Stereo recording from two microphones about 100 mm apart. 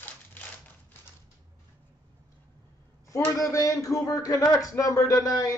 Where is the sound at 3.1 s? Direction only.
35° left (ahead or behind).